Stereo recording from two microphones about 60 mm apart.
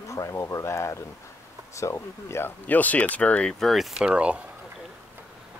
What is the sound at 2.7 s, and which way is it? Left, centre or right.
Speech, left.